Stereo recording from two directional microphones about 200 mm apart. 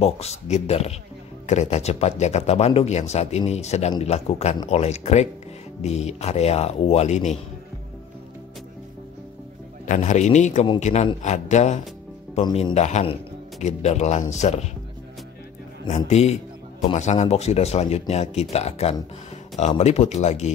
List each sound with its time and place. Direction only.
0.0 s speech: 30° left (ahead or behind)
9.8 s speech: 35° left (ahead or behind)
12.4 s speech: 25° left (ahead or behind)
15.9 s speech: 35° left (ahead or behind)